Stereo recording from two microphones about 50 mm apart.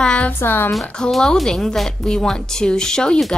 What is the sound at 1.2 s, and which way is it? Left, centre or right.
A woman's voice, centre.